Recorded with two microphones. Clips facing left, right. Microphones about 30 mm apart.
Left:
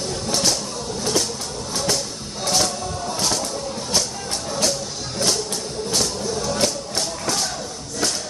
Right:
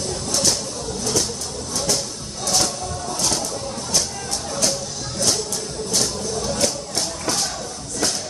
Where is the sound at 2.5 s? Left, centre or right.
Centre.